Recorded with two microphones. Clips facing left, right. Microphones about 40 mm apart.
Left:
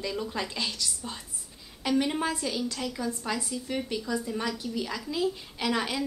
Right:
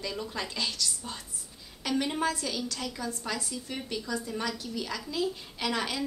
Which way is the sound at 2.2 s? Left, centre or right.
Centre.